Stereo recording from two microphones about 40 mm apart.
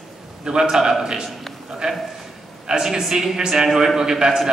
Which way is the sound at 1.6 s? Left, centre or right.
Centre.